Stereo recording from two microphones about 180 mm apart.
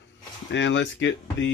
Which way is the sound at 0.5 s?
85° left.